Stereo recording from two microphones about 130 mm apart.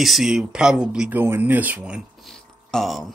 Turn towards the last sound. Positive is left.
turn(degrees=0)  # may be behind; listen again after turning